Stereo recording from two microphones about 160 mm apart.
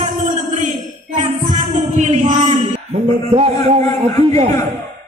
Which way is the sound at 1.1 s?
50° right (ahead or behind).